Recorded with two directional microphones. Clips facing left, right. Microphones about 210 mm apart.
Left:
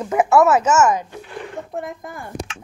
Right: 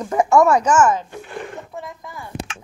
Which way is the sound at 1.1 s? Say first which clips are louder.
Right 1 dB; 50° right (ahead or behind).